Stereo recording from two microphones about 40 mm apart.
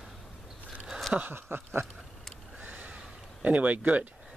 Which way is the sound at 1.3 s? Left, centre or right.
Right.